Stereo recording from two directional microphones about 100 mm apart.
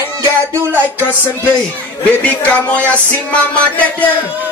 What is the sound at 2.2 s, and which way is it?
Speech, 15° left (ahead or behind).